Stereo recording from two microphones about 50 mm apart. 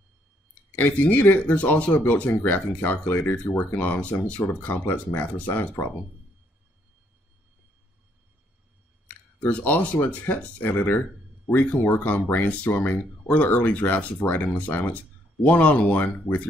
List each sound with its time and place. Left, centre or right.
0.7 s speech: left
5.5 s speech: left
9.0 s a sound: left
10.0 s speech: left